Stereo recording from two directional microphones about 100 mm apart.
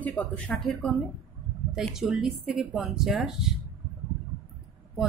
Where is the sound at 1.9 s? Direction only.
5° right (ahead or behind).